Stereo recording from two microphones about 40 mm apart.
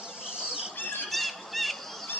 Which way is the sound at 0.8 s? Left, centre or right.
Left.